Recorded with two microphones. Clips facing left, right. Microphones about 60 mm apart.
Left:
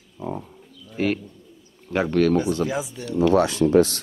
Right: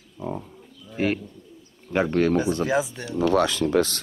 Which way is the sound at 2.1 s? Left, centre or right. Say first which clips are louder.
Left 3 dB; right.